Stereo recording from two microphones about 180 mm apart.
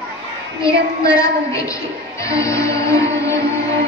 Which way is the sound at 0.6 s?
20° left (ahead or behind).